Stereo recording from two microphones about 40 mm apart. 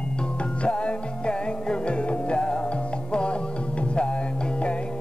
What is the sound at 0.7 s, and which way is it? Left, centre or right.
Music, left.